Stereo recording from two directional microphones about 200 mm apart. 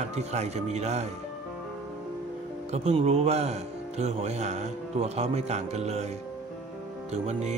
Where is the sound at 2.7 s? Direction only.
30° right (ahead or behind).